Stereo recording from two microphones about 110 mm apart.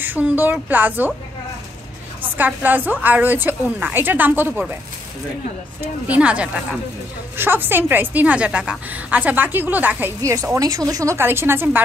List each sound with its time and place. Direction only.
0.0 s a woman's voice: 15° right (ahead or behind)
2.3 s a woman's voice: 15° right (ahead or behind)
5.8 s a woman's voice: 15° right (ahead or behind)